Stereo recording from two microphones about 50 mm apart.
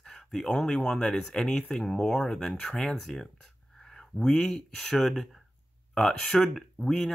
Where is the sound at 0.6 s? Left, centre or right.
Centre.